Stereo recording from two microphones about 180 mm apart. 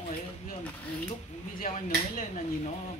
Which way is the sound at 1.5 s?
50° left (ahead or behind).